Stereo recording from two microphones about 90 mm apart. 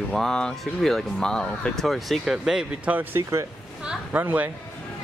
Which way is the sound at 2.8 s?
20° right (ahead or behind).